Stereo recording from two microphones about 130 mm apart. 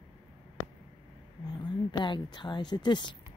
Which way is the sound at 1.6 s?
35° left (ahead or behind).